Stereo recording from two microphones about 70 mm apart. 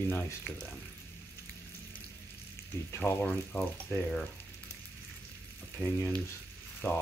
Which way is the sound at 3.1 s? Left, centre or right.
Left.